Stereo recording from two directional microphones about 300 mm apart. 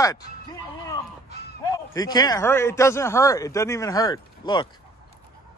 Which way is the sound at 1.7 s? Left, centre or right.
Centre.